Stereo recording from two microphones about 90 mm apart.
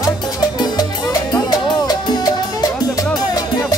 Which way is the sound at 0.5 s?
45° left (ahead or behind).